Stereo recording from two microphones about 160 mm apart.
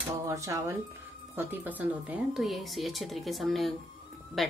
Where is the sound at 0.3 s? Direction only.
20° right (ahead or behind).